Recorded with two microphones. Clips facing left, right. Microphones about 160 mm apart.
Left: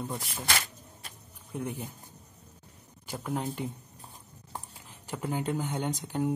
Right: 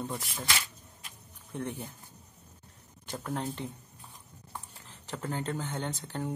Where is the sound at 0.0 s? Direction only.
Centre (ahead or behind).